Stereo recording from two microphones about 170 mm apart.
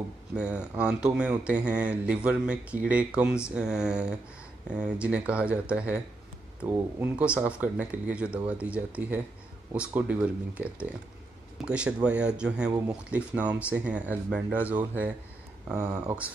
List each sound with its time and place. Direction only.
0.3 s speech: 5° right (ahead or behind)
15.7 s speech: 20° right (ahead or behind)